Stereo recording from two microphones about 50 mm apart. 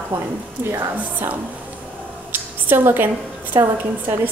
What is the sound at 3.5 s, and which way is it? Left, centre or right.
Speech, right.